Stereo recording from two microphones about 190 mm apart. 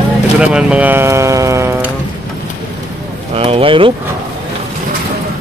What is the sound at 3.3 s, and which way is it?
Speech, 30° right (ahead or behind).